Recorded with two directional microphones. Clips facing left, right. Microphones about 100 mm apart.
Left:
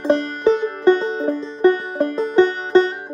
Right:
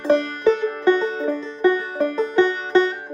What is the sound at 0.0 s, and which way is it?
Music, 25° left (ahead or behind).